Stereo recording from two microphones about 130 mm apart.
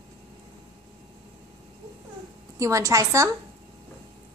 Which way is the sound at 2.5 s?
25° right (ahead or behind).